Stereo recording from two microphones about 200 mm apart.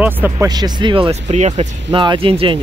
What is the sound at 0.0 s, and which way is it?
Speech, 10° right (ahead or behind).